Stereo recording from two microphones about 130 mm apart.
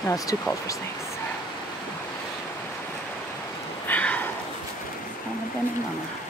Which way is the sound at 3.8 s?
10° left (ahead or behind).